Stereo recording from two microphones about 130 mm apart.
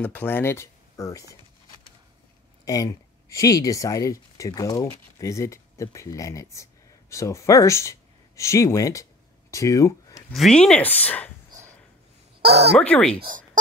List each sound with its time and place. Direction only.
0.0 s speech: 10° left (ahead or behind)
2.6 s speech: 25° left (ahead or behind)
10.3 s speech: 5° left (ahead or behind)
12.7 s speech: 10° left (ahead or behind)